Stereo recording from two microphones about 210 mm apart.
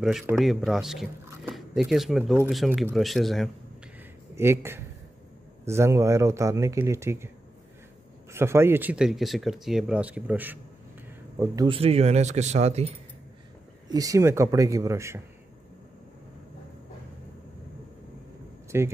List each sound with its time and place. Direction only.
0.0 s speech: centre (ahead or behind)
4.4 s speech: 10° right (ahead or behind)
8.3 s speech: 10° right (ahead or behind)
11.3 s speech: 20° right (ahead or behind)
13.8 s speech: 15° right (ahead or behind)
18.7 s speech: 10° right (ahead or behind)